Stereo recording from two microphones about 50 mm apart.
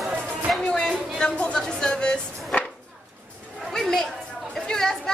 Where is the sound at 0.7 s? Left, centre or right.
Centre.